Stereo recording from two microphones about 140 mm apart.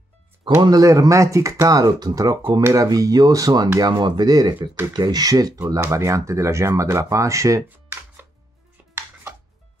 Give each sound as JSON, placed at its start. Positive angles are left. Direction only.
{"t": 0.6, "sound": "speech", "side_deg": -25}